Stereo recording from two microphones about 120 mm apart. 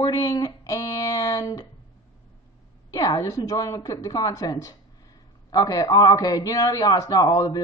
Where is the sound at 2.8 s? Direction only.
30° left (ahead or behind).